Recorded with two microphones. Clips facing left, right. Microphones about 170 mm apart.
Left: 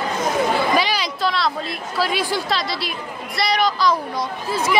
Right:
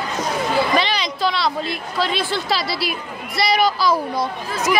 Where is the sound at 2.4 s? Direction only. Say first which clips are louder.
Right 2 dB; 5° right (ahead or behind).